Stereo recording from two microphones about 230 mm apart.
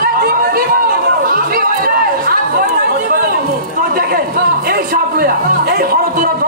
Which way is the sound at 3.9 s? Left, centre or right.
Right.